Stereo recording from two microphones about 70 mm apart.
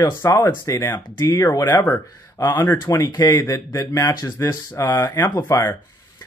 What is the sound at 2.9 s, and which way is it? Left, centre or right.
Mantra, left.